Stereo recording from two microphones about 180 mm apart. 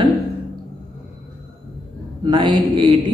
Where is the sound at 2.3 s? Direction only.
25° right (ahead or behind).